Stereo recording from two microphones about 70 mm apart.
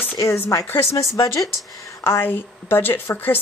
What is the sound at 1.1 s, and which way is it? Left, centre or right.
Speech, left.